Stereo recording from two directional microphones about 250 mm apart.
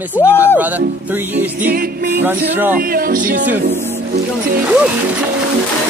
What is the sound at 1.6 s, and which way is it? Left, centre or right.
Music, right.